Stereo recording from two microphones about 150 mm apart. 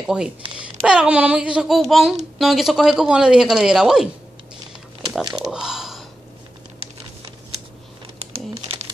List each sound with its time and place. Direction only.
0.0 s a woman's voice: 5° right (ahead or behind)
5.4 s a sound: 5° right (ahead or behind)
8.2 s crumpling: 40° right (ahead or behind)